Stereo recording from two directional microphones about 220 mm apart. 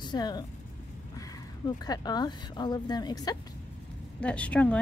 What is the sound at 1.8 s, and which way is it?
A woman's voice, 20° left (ahead or behind).